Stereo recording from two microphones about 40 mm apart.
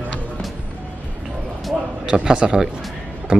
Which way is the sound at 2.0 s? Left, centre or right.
Centre.